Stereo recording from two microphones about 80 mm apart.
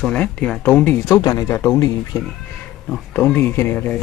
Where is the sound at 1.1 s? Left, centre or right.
Left.